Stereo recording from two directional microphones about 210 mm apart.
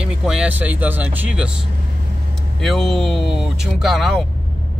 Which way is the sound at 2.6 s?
Centre (ahead or behind).